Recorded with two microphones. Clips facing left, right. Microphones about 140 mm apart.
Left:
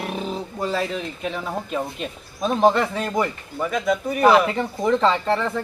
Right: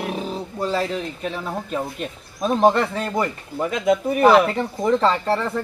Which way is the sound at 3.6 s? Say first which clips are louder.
Right 3 dB; 20° right (ahead or behind).